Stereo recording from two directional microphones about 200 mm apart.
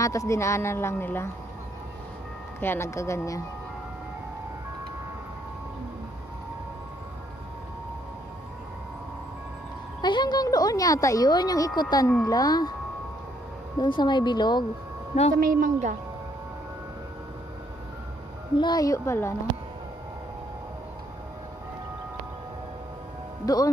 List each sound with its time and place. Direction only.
0.0 s a woman's voice: 15° left (ahead or behind)
2.6 s a woman's voice: 10° left (ahead or behind)
10.0 s a woman's voice: 20° left (ahead or behind)
13.7 s a woman's voice: 25° left (ahead or behind)
15.3 s a woman's voice: 45° right (ahead or behind)
18.6 s a woman's voice: 20° left (ahead or behind)
23.4 s speech: 20° left (ahead or behind)